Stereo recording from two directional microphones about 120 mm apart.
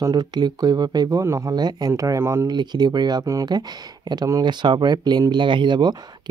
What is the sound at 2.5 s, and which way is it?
Speech, 35° right (ahead or behind).